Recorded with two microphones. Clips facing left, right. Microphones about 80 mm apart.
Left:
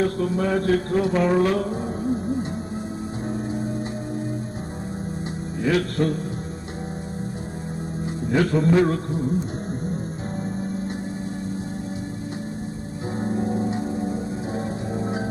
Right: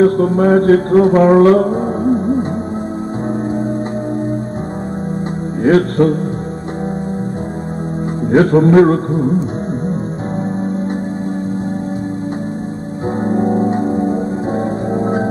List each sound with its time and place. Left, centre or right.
0.0 s music: right
5.6 s mantra: right
8.3 s music: right
13.2 s music: right